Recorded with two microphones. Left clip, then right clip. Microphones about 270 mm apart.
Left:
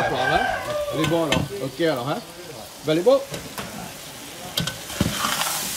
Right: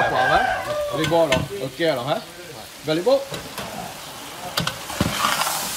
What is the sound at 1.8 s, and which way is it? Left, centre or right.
Speech, centre.